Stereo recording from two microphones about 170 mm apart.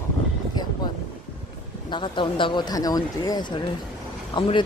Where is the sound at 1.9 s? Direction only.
30° left (ahead or behind).